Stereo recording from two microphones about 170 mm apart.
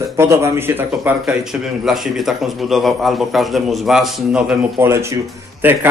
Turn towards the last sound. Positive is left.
turn(degrees=-10)  # may be behind; listen again after turning